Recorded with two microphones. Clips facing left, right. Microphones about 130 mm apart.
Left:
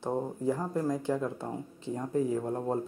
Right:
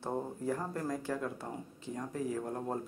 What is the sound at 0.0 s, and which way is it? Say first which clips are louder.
Speech: left 5 dB; 15° left (ahead or behind).